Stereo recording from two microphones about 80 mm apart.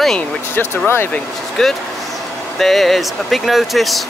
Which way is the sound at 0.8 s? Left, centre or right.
Left.